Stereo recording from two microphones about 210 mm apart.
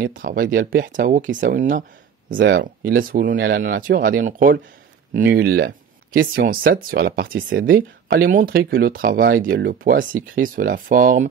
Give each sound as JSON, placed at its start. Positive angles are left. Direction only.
{"t": 0.0, "sound": "speech", "side_deg": -40}
{"t": 2.3, "sound": "speech", "side_deg": -50}